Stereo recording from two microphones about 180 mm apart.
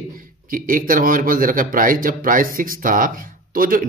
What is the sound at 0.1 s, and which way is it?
Speech, 50° right (ahead or behind).